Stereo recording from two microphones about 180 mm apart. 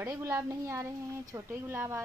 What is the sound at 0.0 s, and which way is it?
Speech, 15° right (ahead or behind).